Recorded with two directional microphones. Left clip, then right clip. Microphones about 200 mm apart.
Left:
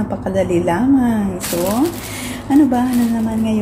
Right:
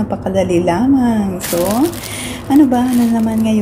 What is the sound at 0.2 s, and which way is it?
Speech, 10° right (ahead or behind).